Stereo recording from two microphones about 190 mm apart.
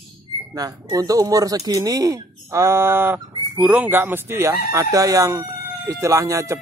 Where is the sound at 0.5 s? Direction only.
20° right (ahead or behind).